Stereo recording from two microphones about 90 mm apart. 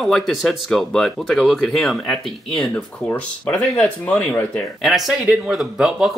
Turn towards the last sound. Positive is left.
turn(degrees=-5)  # may be behind; listen again after turning